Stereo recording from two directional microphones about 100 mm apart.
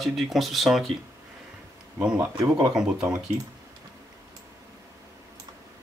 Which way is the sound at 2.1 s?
30° right (ahead or behind).